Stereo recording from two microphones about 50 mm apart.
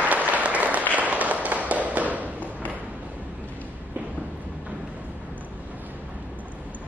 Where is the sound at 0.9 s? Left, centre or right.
Right.